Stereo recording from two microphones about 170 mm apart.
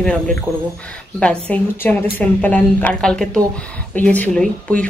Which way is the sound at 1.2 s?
5° left (ahead or behind).